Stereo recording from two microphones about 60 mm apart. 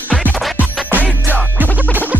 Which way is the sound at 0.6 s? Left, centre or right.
Right.